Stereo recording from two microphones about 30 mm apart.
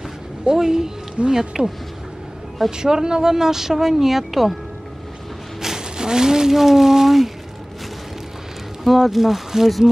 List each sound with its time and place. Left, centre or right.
0.5 s speech: centre
2.8 s speech: right
5.6 s speech: centre
8.8 s speech: centre